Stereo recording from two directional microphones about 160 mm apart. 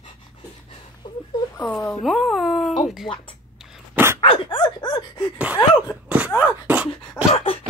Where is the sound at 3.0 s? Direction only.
35° left (ahead or behind).